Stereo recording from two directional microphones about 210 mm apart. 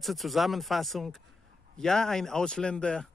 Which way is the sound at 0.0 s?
Centre (ahead or behind).